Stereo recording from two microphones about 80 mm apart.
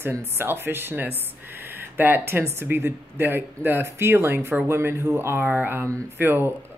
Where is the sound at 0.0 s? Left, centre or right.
Right.